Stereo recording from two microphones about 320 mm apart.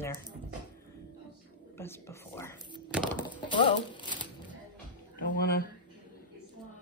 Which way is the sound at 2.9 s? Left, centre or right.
Centre.